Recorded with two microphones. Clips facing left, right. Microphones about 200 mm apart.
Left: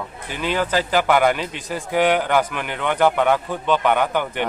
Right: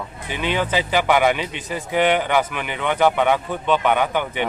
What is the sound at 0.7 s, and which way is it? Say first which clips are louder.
A man's voice: left 1 dB; 5° right (ahead or behind).